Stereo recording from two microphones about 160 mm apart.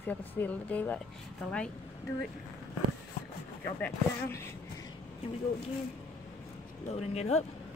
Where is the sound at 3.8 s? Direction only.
15° left (ahead or behind).